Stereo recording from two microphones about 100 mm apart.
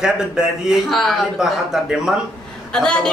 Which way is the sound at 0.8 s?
5° left (ahead or behind).